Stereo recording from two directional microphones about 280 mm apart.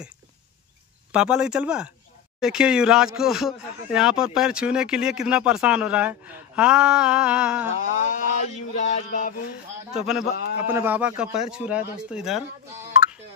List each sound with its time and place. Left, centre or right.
1.1 s speech: centre
7.8 s a sound: left
9.9 s speech: centre